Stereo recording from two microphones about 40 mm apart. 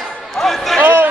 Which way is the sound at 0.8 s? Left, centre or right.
Right.